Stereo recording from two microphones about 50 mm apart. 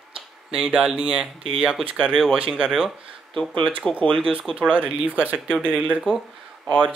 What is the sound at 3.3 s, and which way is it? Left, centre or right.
Speech, centre.